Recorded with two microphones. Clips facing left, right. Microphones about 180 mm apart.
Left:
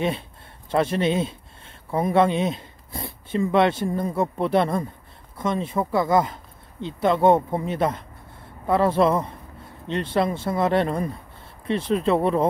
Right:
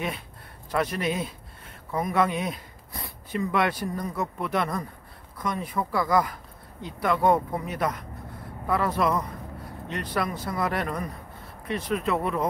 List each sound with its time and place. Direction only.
0.7 s speech: 25° left (ahead or behind)